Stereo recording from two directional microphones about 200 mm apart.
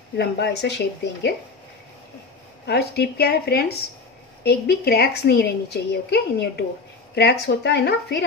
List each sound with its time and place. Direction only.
0.2 s a woman's voice: 55° left (ahead or behind)
2.6 s a woman's voice: 55° left (ahead or behind)